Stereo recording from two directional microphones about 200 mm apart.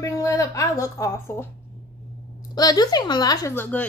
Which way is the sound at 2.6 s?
20° left (ahead or behind).